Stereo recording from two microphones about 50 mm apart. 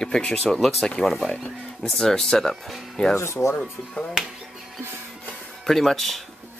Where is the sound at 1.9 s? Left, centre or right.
Centre.